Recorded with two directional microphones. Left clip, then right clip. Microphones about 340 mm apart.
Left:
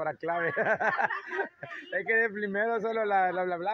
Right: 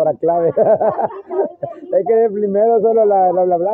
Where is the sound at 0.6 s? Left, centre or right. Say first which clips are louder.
Right 14 dB; left.